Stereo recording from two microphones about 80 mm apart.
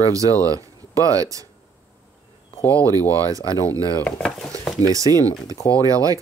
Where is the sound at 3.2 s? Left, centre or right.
Right.